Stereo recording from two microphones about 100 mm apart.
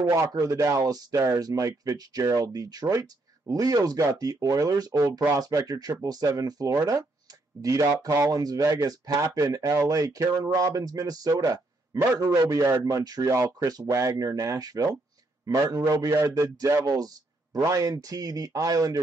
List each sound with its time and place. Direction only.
0.3 s speech: 35° right (ahead or behind)